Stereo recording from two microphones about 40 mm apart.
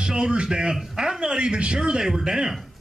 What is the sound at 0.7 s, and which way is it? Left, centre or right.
Speech, centre.